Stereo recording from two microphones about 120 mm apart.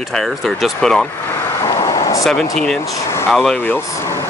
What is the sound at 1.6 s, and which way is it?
Vehicle, 30° left (ahead or behind).